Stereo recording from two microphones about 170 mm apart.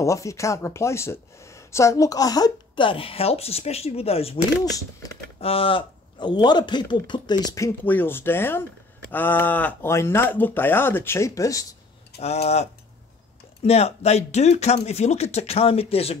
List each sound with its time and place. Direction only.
0.0 s speech: 20° left (ahead or behind); by 4.4 s 35° left (ahead or behind)
5.0 s typing: 20° left (ahead or behind)
5.4 s speech: 35° left (ahead or behind); by 11.6 s 20° left (ahead or behind)
12.2 s speech: 40° left (ahead or behind)
13.7 s speech: 40° left (ahead or behind)